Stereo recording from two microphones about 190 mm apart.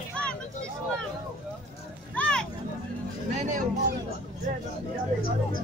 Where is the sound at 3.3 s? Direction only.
45° right (ahead or behind).